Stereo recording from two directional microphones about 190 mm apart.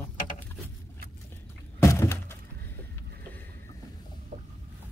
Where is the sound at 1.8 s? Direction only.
15° left (ahead or behind).